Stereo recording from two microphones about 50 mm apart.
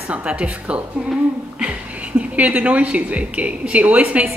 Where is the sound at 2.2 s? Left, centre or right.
Right.